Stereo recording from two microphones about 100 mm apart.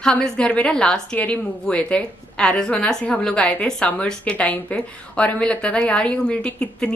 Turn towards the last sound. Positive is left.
turn(degrees=10)  # may be behind; listen again after turning